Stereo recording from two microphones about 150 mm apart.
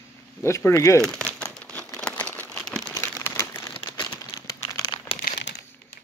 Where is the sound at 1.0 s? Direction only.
5° left (ahead or behind).